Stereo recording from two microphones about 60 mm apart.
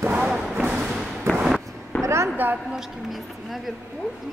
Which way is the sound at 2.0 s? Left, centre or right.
Right.